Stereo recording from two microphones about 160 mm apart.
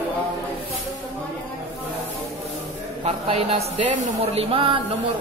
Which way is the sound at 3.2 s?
40° right (ahead or behind).